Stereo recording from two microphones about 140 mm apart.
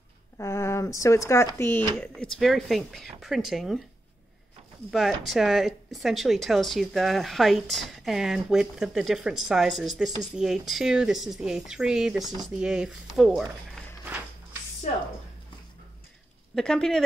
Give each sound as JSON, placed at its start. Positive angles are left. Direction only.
{"t": 0.4, "sound": "speech", "side_deg": 20}
{"t": 2.3, "sound": "speech", "side_deg": 0}
{"t": 4.9, "sound": "speech", "side_deg": 0}
{"t": 14.0, "sound": "a sound", "side_deg": -15}
{"t": 16.5, "sound": "speech", "side_deg": 5}